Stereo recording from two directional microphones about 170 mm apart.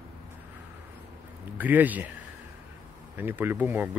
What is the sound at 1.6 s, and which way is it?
Speech, 10° right (ahead or behind).